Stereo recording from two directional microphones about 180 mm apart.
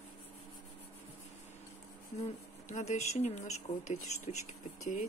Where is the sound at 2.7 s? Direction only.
40° left (ahead or behind).